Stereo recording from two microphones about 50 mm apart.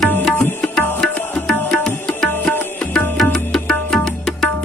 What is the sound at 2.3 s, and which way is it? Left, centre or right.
Music, left.